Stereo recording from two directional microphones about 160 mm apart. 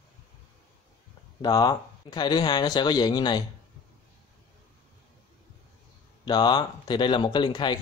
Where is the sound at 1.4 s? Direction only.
25° left (ahead or behind).